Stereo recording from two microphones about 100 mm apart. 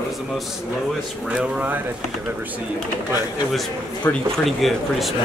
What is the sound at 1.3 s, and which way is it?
Speech, 10° right (ahead or behind).